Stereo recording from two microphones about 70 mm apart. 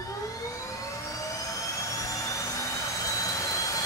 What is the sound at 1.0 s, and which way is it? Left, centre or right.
Jet engine, left.